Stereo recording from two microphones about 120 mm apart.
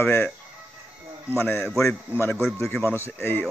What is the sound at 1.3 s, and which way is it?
A man's voice, 20° left (ahead or behind).